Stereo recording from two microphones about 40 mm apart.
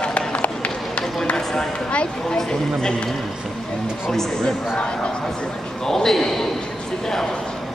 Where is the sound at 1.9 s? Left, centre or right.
Left.